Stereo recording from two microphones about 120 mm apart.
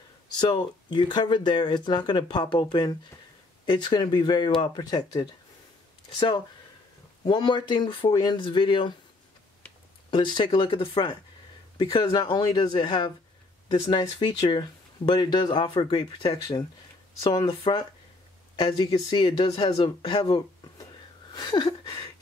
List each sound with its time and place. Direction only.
0.4 s speech: 35° left (ahead or behind)
10.1 s speech: 40° left (ahead or behind)
17.2 s speech: 35° left (ahead or behind)
17.5 s speech: 45° left (ahead or behind)
21.3 s a sound: 35° left (ahead or behind)